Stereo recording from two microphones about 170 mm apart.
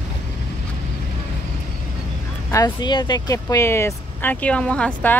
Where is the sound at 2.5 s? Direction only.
25° left (ahead or behind).